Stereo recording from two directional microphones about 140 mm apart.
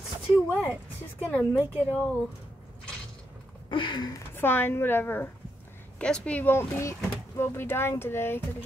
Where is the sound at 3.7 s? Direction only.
35° left (ahead or behind).